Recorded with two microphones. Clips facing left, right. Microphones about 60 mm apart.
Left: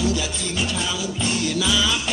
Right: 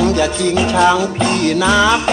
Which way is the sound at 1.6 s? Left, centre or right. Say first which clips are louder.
Right 11 dB; right.